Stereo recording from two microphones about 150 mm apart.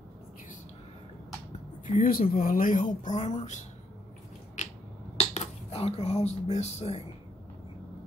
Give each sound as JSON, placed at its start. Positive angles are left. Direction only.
{"t": 1.9, "sound": "speech", "side_deg": 70}
{"t": 5.1, "sound": "speech", "side_deg": 45}